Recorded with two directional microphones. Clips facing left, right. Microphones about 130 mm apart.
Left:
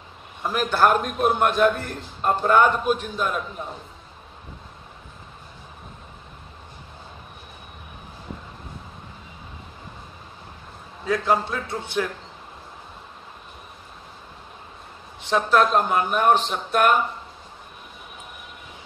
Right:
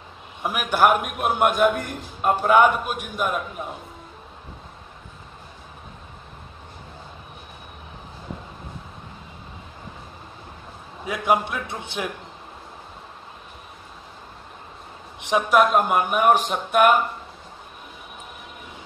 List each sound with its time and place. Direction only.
0.4 s a man's voice: 15° right (ahead or behind)
11.1 s a man's voice: 15° right (ahead or behind)
15.1 s a man's voice: 15° right (ahead or behind)